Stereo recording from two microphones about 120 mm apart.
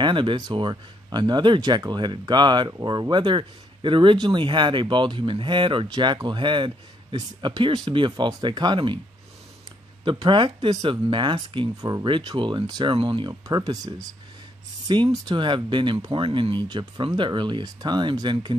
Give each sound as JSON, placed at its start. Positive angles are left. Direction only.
{"t": 0.0, "sound": "speech", "side_deg": -40}
{"t": 10.0, "sound": "speech", "side_deg": -45}